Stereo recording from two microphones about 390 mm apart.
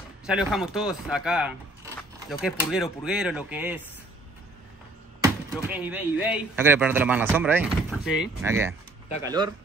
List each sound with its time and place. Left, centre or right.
0.3 s speech: centre
5.7 s speech: centre